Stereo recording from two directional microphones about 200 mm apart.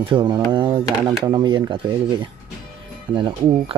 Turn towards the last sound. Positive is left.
turn(degrees=-25)  # may be behind; listen again after turning